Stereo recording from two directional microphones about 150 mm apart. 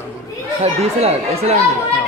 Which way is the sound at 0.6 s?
45° right (ahead or behind).